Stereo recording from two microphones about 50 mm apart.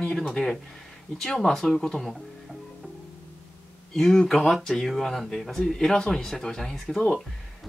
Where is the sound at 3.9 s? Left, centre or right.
Centre.